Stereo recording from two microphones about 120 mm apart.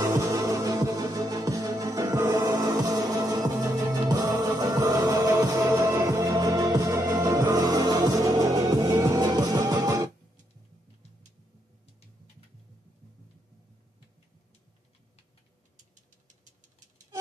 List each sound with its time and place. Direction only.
0.0 s music: 25° right (ahead or behind)